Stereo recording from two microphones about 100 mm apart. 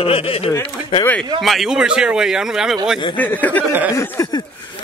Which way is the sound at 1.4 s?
Centre (ahead or behind).